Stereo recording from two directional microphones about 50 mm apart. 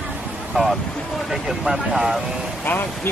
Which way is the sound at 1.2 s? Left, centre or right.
Centre.